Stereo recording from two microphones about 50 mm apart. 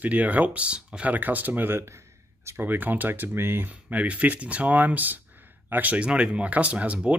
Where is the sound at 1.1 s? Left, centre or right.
Right.